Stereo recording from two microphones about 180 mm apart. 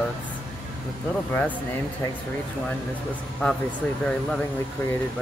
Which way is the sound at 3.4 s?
10° left (ahead or behind).